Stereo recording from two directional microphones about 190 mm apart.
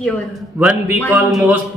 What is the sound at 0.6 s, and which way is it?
A man's voice, 5° right (ahead or behind).